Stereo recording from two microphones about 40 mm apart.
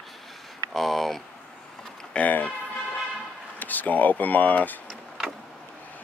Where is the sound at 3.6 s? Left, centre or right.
Left.